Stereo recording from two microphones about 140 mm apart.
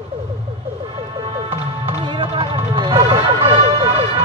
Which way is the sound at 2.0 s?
35° right (ahead or behind).